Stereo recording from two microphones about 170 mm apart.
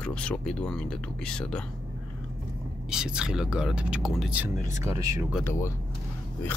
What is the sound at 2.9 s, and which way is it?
Speech, 5° right (ahead or behind).